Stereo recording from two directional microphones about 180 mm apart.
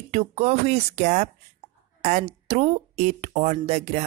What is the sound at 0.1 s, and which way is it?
Speech, 35° right (ahead or behind).